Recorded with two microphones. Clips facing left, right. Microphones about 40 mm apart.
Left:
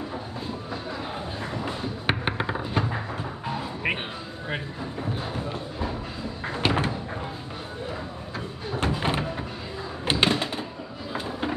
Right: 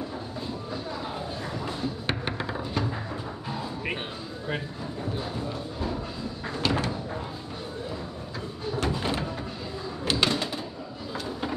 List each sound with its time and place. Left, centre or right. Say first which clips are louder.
1.6 s tap: left 1 dB; left
3.4 s music: left 5 dB; left
6.4 s a sound: left 3 dB; left
8.7 s slam: left 3 dB; left
10.0 s bird: left 3 dB; left
11.1 s a sound: left 3 dB; left